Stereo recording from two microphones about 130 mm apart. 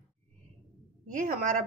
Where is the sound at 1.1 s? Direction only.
85° right.